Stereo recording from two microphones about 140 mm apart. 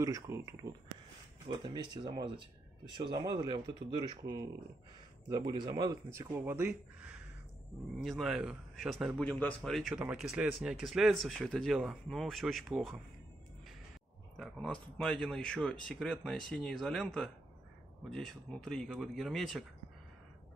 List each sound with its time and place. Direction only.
0.0 s speech: 20° right (ahead or behind)
1.5 s speech: 30° right (ahead or behind); by 9.2 s 5° right (ahead or behind)
9.2 s speech: 10° left (ahead or behind)
14.3 s speech: centre (ahead or behind)